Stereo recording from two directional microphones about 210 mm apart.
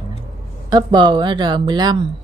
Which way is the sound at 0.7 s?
20° right (ahead or behind).